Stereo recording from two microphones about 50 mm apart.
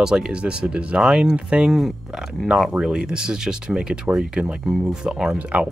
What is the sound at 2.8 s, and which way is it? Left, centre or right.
Speech, centre.